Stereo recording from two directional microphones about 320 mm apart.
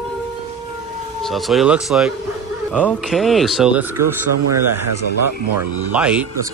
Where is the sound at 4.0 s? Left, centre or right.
Right.